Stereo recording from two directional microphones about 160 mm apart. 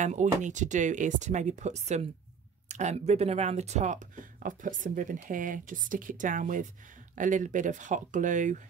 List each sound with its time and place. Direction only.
0.0 s speech: 50° right (ahead or behind)